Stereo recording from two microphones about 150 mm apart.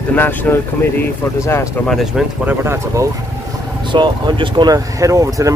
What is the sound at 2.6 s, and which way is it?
Speech, 15° right (ahead or behind).